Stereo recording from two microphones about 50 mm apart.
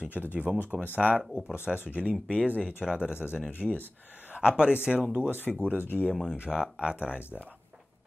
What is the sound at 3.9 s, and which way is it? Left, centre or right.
Speech, right.